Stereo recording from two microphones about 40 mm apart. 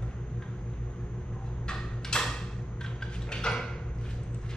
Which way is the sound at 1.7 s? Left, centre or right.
Centre.